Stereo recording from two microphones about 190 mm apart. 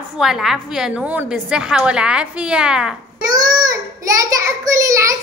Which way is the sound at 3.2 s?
20° right (ahead or behind).